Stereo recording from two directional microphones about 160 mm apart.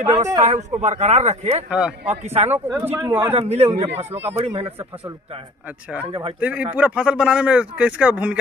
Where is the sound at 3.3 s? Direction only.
40° right (ahead or behind).